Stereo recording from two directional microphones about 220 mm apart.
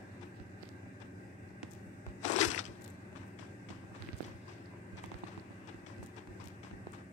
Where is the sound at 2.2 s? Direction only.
30° left (ahead or behind).